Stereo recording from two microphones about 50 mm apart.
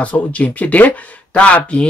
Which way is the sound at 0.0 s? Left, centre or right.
Left.